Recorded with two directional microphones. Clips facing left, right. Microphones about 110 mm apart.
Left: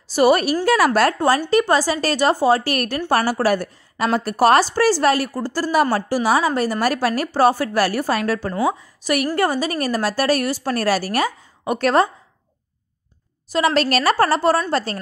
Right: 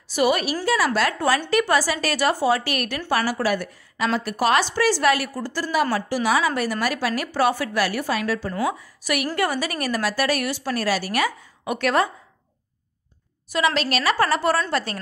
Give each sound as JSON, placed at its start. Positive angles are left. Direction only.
{"t": 0.1, "sound": "a woman's voice", "side_deg": 40}
{"t": 0.7, "sound": "a woman's voice", "side_deg": 55}
{"t": 1.5, "sound": "a woman's voice", "side_deg": 30}
{"t": 8.5, "sound": "a woman's voice", "side_deg": 30}
{"t": 13.5, "sound": "a woman's voice", "side_deg": 40}